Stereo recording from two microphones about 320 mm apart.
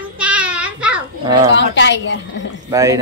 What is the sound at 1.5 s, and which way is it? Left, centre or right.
Speech, left.